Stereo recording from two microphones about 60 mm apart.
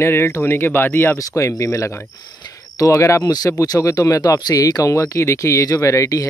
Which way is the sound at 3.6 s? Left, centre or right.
Left.